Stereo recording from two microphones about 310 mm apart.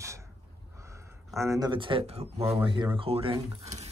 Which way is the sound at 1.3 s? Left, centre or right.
Centre.